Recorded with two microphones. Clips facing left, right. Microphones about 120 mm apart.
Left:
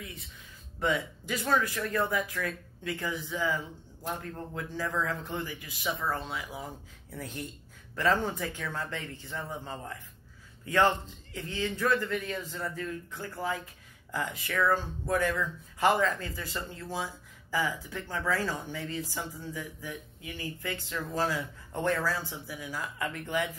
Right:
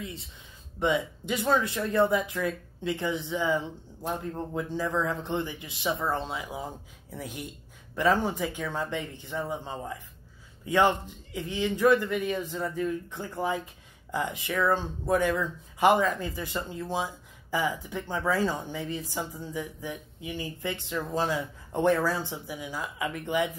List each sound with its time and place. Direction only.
0.0 s speech: 25° right (ahead or behind)
7.1 s a man's voice: 15° right (ahead or behind)